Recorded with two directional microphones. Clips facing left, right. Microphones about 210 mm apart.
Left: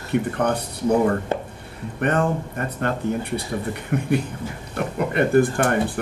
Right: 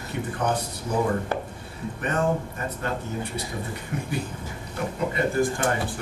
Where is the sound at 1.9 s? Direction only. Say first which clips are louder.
Left 6 dB; 60° left (ahead or behind).